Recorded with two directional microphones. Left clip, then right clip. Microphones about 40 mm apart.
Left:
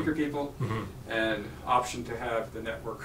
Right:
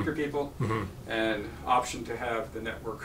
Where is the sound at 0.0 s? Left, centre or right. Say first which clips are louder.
Even; centre.